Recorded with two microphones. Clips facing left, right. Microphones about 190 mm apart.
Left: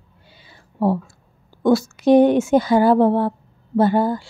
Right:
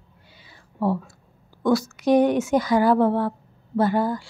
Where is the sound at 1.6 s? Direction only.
25° left (ahead or behind).